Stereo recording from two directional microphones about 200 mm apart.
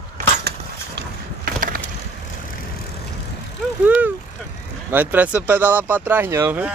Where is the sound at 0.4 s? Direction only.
55° right (ahead or behind).